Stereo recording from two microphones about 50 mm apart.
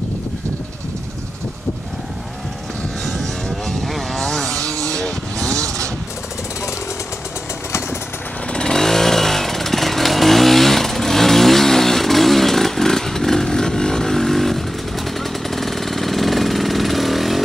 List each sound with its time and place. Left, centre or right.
3.1 s a sound: centre
3.9 s vehicle: centre
4.5 s vehicle: right
4.9 s vehicle: centre
8.5 s chainsaw: centre
15.4 s vehicle: centre